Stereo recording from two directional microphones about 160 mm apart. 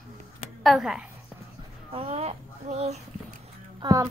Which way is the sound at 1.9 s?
40° right (ahead or behind).